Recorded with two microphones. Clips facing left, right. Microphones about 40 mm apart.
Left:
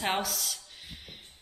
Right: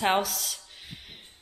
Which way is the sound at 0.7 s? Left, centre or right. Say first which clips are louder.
Right 1 dB; centre.